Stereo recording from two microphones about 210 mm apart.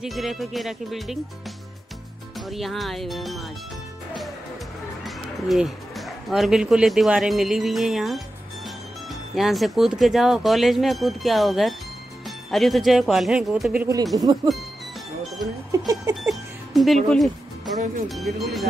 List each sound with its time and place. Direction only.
0.0 s speech: centre (ahead or behind)
2.3 s speech: centre (ahead or behind)
5.0 s speech: centre (ahead or behind)
9.3 s speech: centre (ahead or behind)
14.1 s speech: 20° right (ahead or behind)
15.7 s a sound: 15° right (ahead or behind)
16.3 s music: centre (ahead or behind)
18.0 s speech: centre (ahead or behind)